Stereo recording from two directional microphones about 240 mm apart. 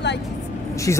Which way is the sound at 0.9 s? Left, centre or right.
Centre.